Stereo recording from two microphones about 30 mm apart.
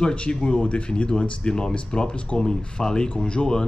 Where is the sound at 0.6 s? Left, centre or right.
Left.